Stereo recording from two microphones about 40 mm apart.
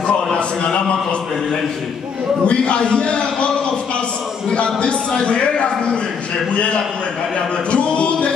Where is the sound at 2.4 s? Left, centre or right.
Left.